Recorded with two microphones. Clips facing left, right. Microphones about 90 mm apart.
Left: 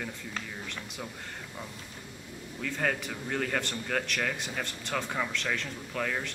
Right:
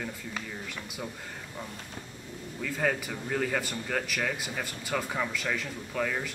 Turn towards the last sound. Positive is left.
turn(degrees=-5)  # may be behind; listen again after turning